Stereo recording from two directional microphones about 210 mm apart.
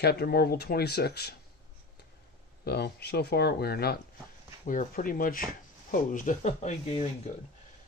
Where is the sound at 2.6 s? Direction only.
50° left (ahead or behind); by 7.1 s 30° left (ahead or behind).